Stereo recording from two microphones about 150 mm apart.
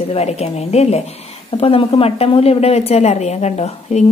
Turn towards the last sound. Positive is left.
turn(degrees=45)  # may be behind; listen again after turning